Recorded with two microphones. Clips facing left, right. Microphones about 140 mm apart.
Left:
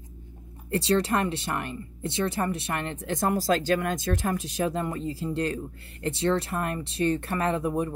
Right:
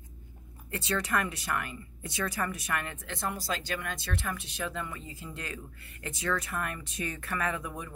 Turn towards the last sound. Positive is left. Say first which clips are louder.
# left 9 dB
turn(degrees=35)  # may be behind; listen again after turning